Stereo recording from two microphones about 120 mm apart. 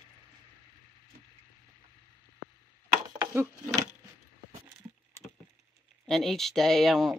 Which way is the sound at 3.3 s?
25° right (ahead or behind).